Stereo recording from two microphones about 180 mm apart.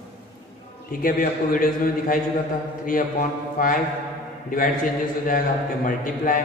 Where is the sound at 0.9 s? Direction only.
50° left (ahead or behind).